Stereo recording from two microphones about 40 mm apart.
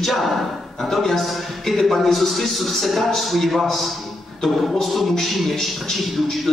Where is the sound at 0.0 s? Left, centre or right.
Centre.